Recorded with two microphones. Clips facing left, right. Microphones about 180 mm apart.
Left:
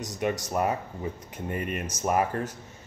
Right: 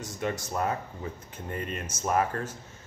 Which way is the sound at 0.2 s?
15° left (ahead or behind).